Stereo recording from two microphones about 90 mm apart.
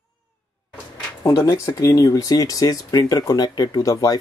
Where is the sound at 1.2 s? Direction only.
40° left (ahead or behind).